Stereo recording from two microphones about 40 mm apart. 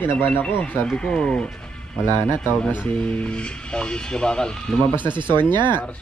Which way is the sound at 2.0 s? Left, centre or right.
Left.